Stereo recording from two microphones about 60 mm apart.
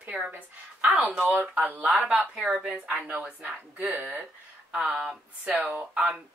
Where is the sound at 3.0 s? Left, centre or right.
Right.